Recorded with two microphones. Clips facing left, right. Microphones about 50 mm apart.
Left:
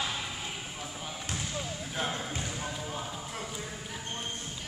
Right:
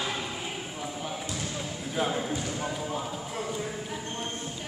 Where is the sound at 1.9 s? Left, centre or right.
Centre.